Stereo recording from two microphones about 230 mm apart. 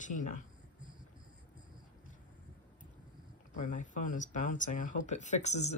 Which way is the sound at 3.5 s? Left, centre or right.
Left.